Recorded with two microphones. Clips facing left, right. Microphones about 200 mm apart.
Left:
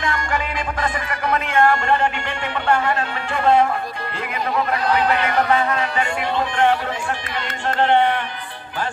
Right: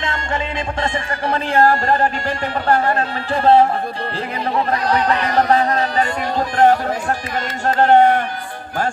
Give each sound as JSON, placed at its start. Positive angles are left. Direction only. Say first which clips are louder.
{"t": 0.0, "sound": "speech", "louder": "even", "side_deg": -25}
{"t": 4.8, "sound": "speech", "louder": "right 1 dB", "side_deg": -40}